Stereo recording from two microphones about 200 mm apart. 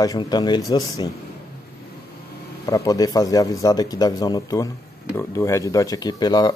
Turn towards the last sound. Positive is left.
turn(degrees=20)  # may be behind; listen again after turning